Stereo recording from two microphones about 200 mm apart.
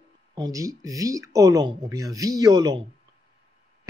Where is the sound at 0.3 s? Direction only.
20° right (ahead or behind).